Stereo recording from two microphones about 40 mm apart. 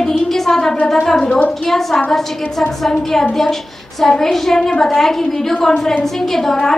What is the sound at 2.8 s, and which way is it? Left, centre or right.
A woman's voice, centre.